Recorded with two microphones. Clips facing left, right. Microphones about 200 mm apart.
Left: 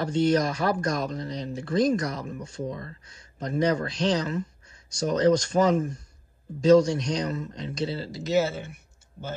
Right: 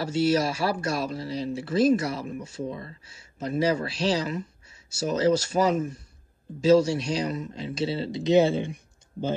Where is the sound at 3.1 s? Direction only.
5° right (ahead or behind).